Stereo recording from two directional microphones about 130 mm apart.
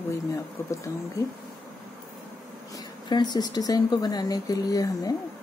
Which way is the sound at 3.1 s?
30° left (ahead or behind).